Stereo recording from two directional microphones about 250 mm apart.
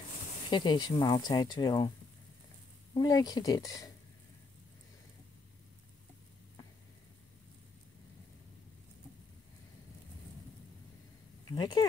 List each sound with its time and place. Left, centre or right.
0.5 s speech: centre
2.9 s speech: centre
11.5 s speech: centre